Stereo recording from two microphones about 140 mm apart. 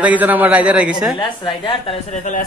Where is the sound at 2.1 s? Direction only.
60° left (ahead or behind).